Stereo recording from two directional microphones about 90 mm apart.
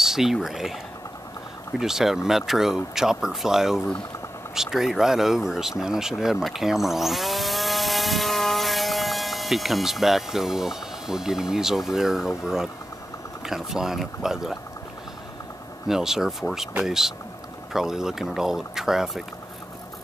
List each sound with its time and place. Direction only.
0.0 s speech: 5° right (ahead or behind)
1.8 s speech: 5° right (ahead or behind)
15.9 s speech: 5° right (ahead or behind)